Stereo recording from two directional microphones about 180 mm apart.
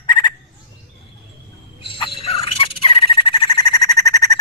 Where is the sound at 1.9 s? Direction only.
30° left (ahead or behind).